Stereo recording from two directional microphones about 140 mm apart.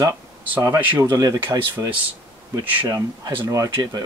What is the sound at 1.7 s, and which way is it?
Speech, 15° right (ahead or behind).